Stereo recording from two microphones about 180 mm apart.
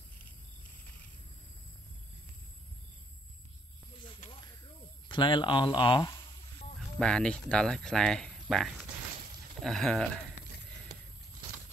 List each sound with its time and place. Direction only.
5.0 s speech: 25° left (ahead or behind)
7.0 s speech: 5° left (ahead or behind)